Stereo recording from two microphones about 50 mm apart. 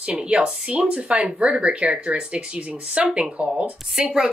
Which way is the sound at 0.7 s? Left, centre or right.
Right.